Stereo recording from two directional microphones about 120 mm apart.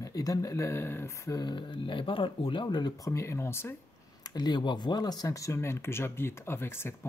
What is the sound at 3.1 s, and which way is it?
Speech, 25° left (ahead or behind).